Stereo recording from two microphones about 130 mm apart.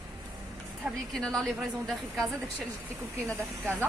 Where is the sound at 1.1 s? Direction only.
5° left (ahead or behind).